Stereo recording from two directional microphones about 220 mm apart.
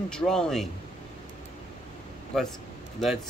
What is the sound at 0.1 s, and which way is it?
Speech, 5° left (ahead or behind).